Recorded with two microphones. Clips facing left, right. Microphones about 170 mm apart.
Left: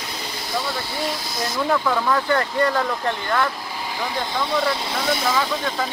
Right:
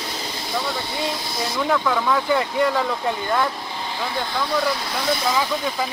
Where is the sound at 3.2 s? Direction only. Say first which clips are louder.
Even; 15° right (ahead or behind).